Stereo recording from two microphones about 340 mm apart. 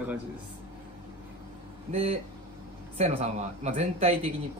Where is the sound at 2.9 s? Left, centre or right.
Centre.